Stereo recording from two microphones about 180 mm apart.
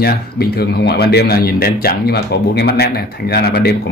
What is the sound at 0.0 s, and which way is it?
Speech, 60° left (ahead or behind).